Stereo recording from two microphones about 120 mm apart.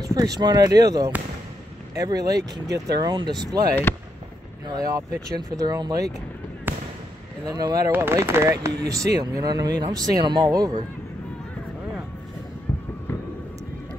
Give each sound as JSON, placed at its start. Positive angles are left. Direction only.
{"t": 0.0, "sound": "speech", "side_deg": -30}
{"t": 4.6, "sound": "speech", "side_deg": -30}
{"t": 6.7, "sound": "fireworks", "side_deg": -15}
{"t": 7.4, "sound": "speech", "side_deg": -30}
{"t": 7.9, "sound": "speech", "side_deg": -20}